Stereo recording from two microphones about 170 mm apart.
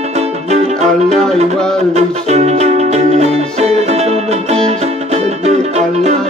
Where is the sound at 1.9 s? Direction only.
40° right (ahead or behind).